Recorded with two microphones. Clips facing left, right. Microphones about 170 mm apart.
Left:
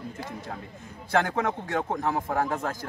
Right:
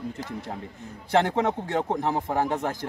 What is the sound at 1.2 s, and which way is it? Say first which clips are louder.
Speech: right 3 dB; 25° right (ahead or behind).